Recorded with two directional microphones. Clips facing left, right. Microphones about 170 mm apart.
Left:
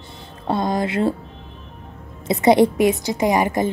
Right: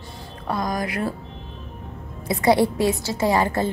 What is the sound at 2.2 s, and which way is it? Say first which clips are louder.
A woman's voice: left 4 dB; 20° left (ahead or behind).